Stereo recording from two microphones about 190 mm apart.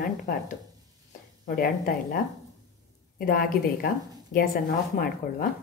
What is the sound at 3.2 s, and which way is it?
A woman's voice, 50° left (ahead or behind).